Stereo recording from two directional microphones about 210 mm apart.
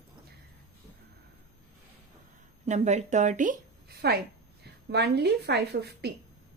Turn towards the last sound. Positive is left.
turn(degrees=-50)  # may be behind; listen again after turning